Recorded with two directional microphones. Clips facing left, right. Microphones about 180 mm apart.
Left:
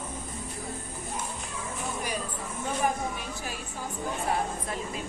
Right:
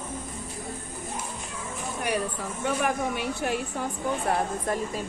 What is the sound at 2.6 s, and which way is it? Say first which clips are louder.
A woman's voice: right 3 dB; 70° right (ahead or behind).